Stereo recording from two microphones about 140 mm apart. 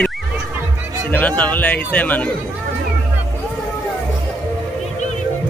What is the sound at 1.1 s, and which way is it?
Speech, 10° left (ahead or behind).